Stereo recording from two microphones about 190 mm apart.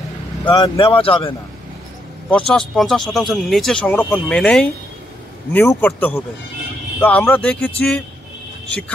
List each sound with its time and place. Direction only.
0.5 s speech: 20° left (ahead or behind)
2.2 s a man's voice: 5° left (ahead or behind)